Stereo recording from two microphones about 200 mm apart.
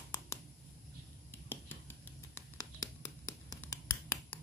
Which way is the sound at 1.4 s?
10° left (ahead or behind).